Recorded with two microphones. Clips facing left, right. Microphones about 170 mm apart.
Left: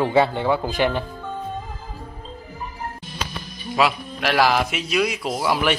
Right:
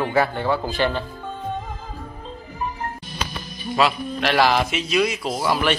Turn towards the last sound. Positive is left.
turn(degrees=10)  # may be behind; listen again after turning